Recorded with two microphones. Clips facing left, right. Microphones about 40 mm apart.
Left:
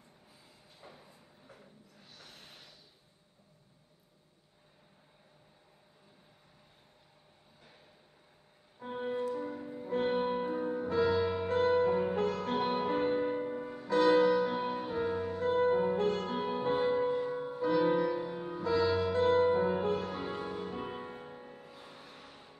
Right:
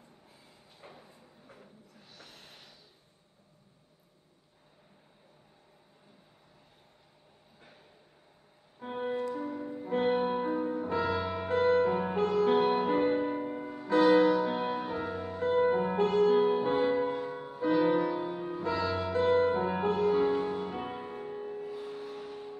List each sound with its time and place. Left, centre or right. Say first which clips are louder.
0.8 s a sound: right 2 dB; right
2.0 s a sound: right 1 dB; centre
8.8 s music: right 2 dB; centre
9.8 s music: right 3 dB; right
10.1 s music: right 3 dB; centre
15.0 s music: left 2 dB; centre
15.6 s music: even; centre
18.9 s music: even; right
19.2 s music: right 1 dB; centre
19.6 s music: even; right
19.9 s music: right 8 dB; centre